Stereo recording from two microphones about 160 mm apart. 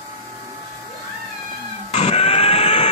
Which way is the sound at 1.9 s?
40° left (ahead or behind).